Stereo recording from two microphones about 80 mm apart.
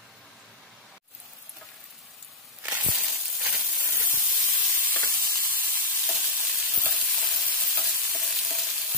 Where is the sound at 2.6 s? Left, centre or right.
Right.